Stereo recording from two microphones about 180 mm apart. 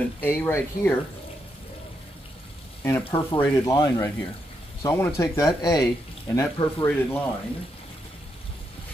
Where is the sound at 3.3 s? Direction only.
15° left (ahead or behind).